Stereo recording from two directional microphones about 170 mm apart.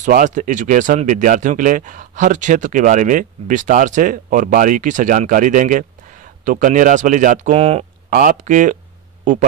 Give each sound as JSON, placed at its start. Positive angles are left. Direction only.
{"t": 0.0, "sound": "speech", "side_deg": -45}
{"t": 8.1, "sound": "speech", "side_deg": -50}